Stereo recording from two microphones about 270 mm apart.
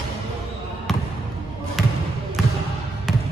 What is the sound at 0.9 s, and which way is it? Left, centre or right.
Trickle, centre.